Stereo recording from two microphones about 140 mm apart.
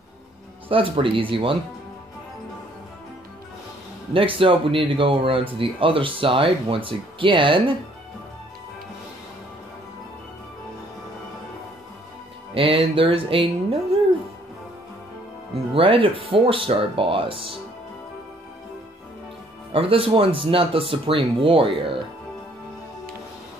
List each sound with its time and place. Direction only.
0.7 s speech: 40° right (ahead or behind)
4.1 s speech: 40° right (ahead or behind)
12.5 s speech: 40° right (ahead or behind)
15.7 s speech: 40° right (ahead or behind)
19.7 s speech: 40° right (ahead or behind)